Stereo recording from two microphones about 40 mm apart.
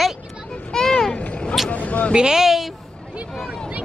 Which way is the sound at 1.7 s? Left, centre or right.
Left.